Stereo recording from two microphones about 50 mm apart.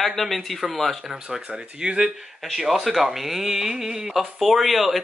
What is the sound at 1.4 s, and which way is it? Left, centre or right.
Speech, centre.